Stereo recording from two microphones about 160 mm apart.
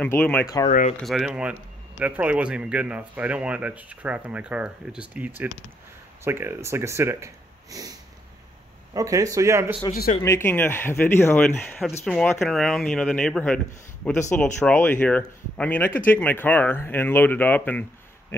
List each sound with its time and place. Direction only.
0.0 s speech: 5° left (ahead or behind)
0.7 s speech: 50° left (ahead or behind)
1.0 s speech: centre (ahead or behind); by 7.9 s 20° right (ahead or behind)
8.9 s speech: 20° right (ahead or behind)
10.2 s speech: 15° left (ahead or behind)